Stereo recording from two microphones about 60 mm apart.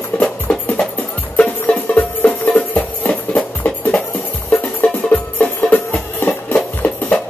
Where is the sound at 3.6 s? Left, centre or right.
Left.